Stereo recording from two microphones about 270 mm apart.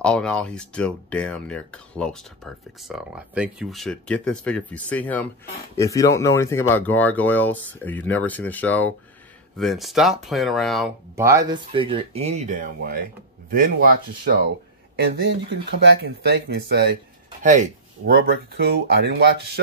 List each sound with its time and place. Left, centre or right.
0.0 s speech: centre
11.1 s speech: centre; by 16.9 s right
17.4 s speech: right